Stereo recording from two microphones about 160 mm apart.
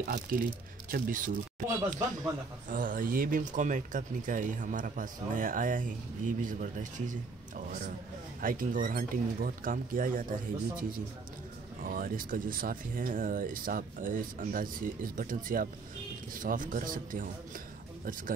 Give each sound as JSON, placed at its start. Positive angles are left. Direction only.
{"t": 0.0, "sound": "speech", "side_deg": -60}
{"t": 2.7, "sound": "speech", "side_deg": -55}